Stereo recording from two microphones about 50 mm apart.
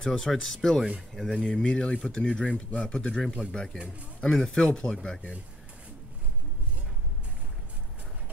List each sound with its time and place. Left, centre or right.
0.0 s speech: centre